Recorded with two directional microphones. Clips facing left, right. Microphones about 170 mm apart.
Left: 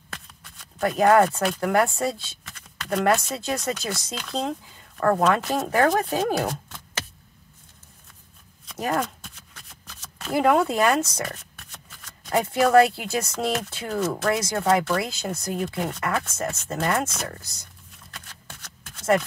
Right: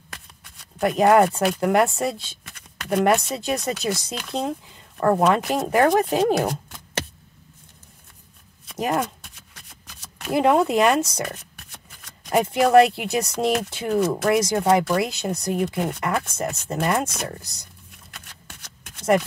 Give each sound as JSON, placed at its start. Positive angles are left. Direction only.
{"t": 0.7, "sound": "speech", "side_deg": -20}
{"t": 8.7, "sound": "speech", "side_deg": -20}
{"t": 10.2, "sound": "speech", "side_deg": -20}
{"t": 12.3, "sound": "speech", "side_deg": -15}
{"t": 18.6, "sound": "a sound", "side_deg": -15}